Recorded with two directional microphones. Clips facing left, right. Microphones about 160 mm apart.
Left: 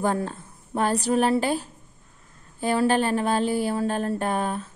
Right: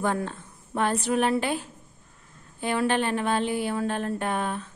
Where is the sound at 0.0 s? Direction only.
35° left (ahead or behind).